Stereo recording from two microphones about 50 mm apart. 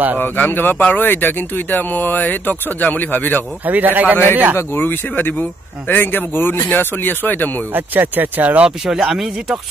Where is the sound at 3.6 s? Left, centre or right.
Right.